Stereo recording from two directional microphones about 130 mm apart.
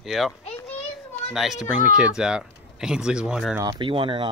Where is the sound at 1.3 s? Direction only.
5° right (ahead or behind).